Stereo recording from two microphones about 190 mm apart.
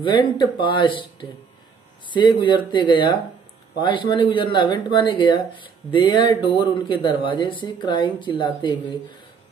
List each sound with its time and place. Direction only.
0.0 s speech: 25° left (ahead or behind)